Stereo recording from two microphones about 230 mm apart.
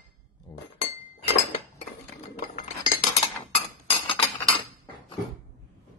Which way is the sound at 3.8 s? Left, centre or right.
Left.